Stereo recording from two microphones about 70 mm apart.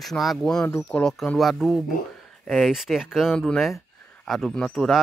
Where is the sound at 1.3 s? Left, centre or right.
Centre.